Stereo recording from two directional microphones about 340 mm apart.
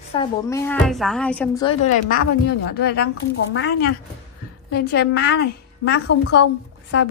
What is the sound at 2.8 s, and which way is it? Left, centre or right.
Speech, left.